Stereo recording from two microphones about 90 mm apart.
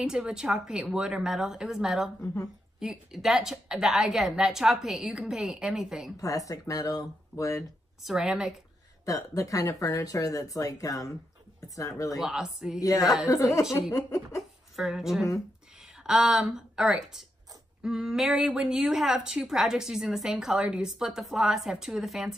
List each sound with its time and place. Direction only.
0.0 s a woman's voice: 5° right (ahead or behind)
6.1 s speech: 40° left (ahead or behind)
8.0 s a woman's voice: 5° right (ahead or behind)
9.0 s speech: 40° left (ahead or behind)
12.2 s a woman's voice: 5° right (ahead or behind)
12.8 s speech: 40° left (ahead or behind)
13.9 s a sound: 40° left (ahead or behind)
14.8 s a woman's voice: 5° right (ahead or behind)